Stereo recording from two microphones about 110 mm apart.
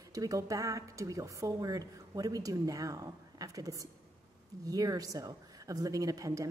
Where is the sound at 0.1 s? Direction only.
30° right (ahead or behind).